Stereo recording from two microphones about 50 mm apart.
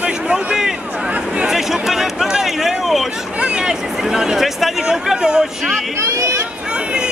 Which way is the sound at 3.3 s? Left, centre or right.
Right.